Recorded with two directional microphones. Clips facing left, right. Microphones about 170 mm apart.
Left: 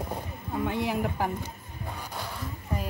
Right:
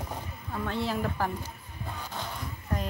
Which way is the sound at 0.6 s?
15° left (ahead or behind).